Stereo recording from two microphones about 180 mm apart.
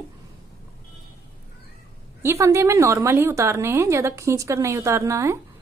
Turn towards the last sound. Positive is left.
turn(degrees=-15)  # may be behind; listen again after turning